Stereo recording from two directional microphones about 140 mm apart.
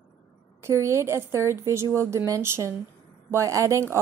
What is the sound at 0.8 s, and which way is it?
A woman's voice, 20° right (ahead or behind).